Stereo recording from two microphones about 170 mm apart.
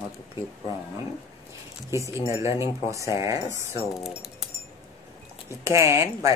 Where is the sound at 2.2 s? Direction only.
15° right (ahead or behind).